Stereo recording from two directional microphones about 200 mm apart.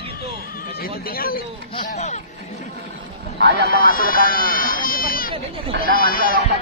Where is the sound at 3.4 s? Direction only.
55° right (ahead or behind).